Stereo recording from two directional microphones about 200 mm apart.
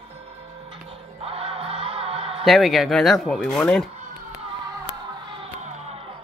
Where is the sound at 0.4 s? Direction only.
30° right (ahead or behind).